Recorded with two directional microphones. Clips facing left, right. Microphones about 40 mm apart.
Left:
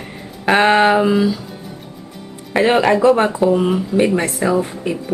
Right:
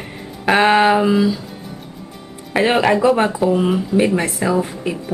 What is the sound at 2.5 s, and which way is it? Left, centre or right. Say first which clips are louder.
Speech: left 1 dB; centre.